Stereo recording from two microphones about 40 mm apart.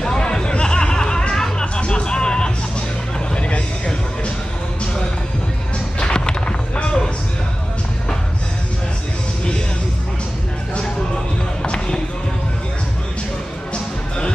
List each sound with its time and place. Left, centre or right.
0.0 s music: centre
3.3 s music: left
5.9 s a sound: left
11.6 s basketball bounce: left